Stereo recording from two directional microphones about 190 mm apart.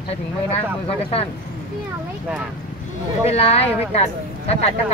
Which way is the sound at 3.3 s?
30° left (ahead or behind).